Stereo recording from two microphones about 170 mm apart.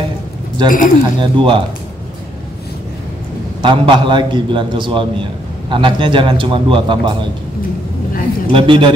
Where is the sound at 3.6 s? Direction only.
30° right (ahead or behind).